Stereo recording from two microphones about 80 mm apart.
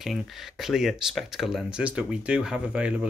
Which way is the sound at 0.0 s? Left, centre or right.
Centre.